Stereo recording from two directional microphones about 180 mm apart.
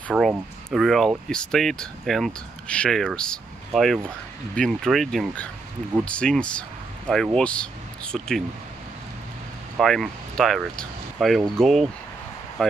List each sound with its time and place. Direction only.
0.1 s speech: 10° right (ahead or behind)
9.8 s speech: centre (ahead or behind)